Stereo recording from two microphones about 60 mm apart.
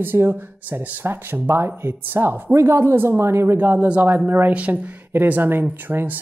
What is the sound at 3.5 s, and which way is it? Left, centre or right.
Speech, right.